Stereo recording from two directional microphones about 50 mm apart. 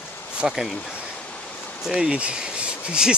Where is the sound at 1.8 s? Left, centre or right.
Centre.